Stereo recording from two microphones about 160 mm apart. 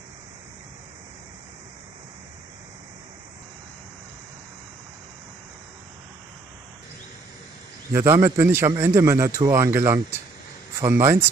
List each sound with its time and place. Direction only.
7.9 s a man's voice: 15° right (ahead or behind)